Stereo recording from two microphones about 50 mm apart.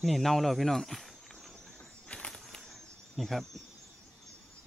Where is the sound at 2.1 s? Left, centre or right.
Left.